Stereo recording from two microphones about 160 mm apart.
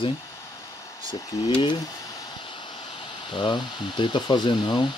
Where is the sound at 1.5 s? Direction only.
30° left (ahead or behind).